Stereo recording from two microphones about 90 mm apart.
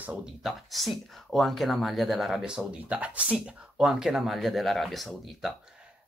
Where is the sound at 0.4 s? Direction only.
Centre (ahead or behind).